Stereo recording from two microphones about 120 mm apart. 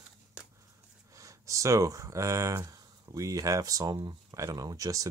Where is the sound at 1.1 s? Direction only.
25° right (ahead or behind).